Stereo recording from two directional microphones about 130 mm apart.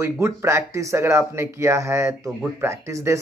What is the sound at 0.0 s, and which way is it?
Speech, 20° right (ahead or behind).